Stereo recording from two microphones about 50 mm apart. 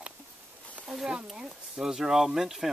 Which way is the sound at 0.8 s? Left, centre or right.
Centre.